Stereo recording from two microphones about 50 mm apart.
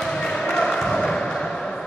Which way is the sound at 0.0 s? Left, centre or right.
Centre.